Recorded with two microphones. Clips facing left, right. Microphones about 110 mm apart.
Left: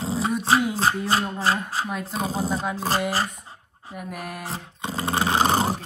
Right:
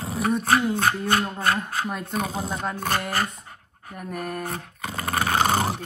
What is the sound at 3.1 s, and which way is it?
Dog, 30° left (ahead or behind).